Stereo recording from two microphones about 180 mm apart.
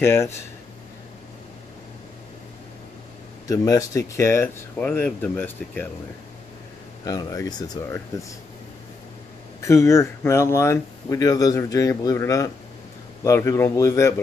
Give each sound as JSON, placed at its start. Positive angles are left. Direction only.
{"t": 0.0, "sound": "speech", "side_deg": 15}
{"t": 3.4, "sound": "speech", "side_deg": 20}
{"t": 7.1, "sound": "speech", "side_deg": 20}
{"t": 9.6, "sound": "speech", "side_deg": 15}